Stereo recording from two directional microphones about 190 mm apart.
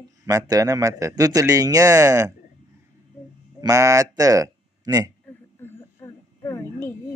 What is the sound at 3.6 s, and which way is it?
Speech, 15° right (ahead or behind).